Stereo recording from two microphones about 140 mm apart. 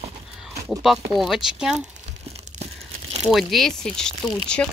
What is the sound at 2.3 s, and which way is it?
Crumpling, 50° right (ahead or behind).